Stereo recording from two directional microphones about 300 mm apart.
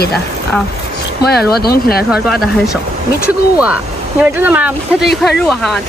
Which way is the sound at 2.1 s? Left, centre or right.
Centre.